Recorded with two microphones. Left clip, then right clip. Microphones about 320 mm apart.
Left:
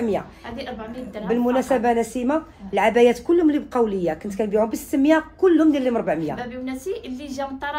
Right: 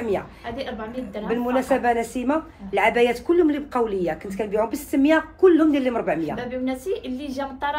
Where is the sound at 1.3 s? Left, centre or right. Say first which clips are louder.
Left 2 dB; left.